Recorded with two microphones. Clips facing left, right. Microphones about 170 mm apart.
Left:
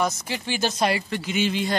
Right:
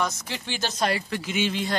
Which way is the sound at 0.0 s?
10° left (ahead or behind).